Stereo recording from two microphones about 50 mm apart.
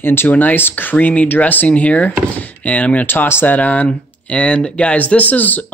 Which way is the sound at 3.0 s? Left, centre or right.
Left.